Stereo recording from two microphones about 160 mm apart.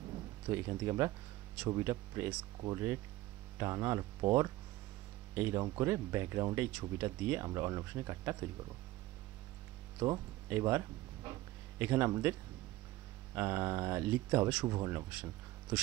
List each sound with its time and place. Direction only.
0.5 s speech: 15° right (ahead or behind)
9.9 s speech: 25° right (ahead or behind)
10.5 s a sound: 15° right (ahead or behind)
11.8 s speech: 15° right (ahead or behind)
14.7 s speech: 20° right (ahead or behind)